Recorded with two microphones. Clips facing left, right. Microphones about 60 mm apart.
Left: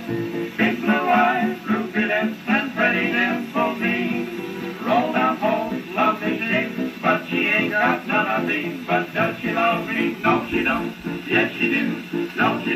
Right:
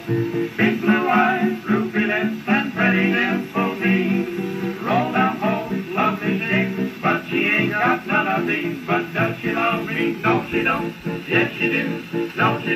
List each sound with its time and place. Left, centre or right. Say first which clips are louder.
0.6 s music: right 1 dB; centre